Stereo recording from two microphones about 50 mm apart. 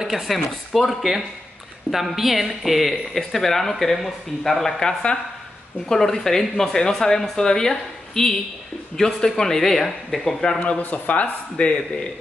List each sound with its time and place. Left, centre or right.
0.0 s speech: centre
10.8 s speech: left
11.5 s speech: centre